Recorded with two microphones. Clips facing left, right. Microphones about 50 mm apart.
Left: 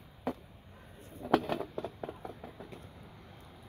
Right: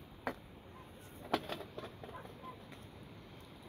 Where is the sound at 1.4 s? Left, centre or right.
Left.